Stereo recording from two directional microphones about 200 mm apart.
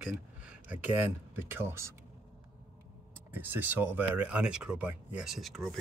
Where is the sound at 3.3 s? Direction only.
10° right (ahead or behind).